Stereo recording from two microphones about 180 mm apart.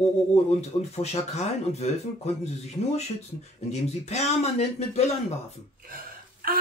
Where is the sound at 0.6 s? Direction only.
35° left (ahead or behind).